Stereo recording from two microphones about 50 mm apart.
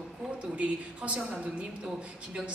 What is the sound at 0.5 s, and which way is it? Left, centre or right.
A woman's voice, right.